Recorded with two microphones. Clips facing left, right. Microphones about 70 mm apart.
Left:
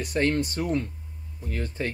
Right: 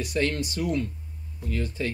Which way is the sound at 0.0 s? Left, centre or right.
Left.